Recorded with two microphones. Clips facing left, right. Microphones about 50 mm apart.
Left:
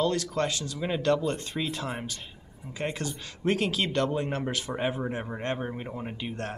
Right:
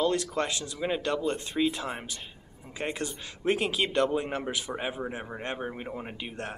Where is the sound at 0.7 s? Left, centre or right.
Centre.